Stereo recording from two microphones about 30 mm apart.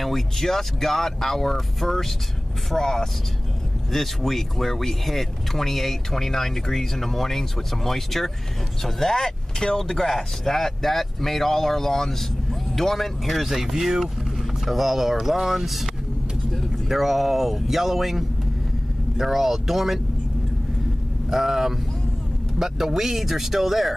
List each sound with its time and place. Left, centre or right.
0.0 s speech: centre
16.9 s speech: centre
21.3 s speech: centre